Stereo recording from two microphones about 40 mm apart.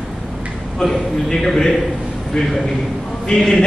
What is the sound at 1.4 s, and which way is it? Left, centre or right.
Speech, centre.